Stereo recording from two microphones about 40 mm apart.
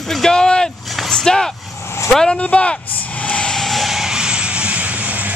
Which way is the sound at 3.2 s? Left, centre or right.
Left.